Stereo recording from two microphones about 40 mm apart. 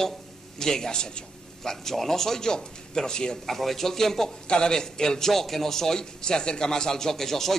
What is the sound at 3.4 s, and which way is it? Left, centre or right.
Speech, centre.